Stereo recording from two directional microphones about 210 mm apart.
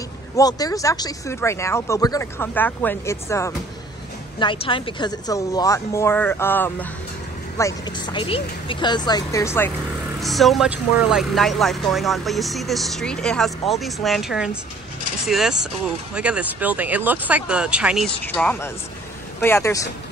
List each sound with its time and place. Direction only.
0.4 s speech: 15° left (ahead or behind)
4.4 s speech: 25° left (ahead or behind)
10.2 s speech: centre (ahead or behind)